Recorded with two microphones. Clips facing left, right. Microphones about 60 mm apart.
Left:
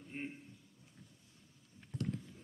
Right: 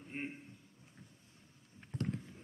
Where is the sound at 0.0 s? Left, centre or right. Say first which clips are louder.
Right 1 dB; right.